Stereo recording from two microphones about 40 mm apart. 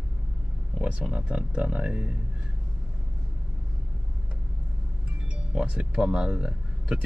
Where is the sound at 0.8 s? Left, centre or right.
Right.